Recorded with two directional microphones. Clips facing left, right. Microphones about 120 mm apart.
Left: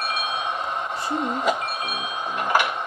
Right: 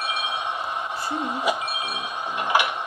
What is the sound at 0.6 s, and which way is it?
Telephone bell ringing, 10° right (ahead or behind).